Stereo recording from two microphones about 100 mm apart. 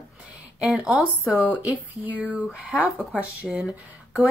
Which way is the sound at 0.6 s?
5° right (ahead or behind).